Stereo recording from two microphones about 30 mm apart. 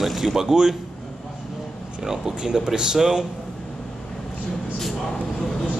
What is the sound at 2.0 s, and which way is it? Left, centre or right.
Speech, centre.